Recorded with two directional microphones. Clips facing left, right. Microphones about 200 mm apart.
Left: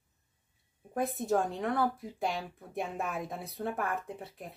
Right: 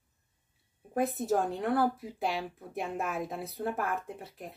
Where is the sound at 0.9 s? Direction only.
Centre (ahead or behind).